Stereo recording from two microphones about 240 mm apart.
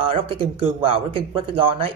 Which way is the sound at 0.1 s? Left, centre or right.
Right.